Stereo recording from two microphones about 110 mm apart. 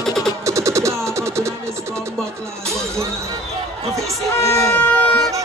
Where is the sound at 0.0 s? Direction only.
5° left (ahead or behind).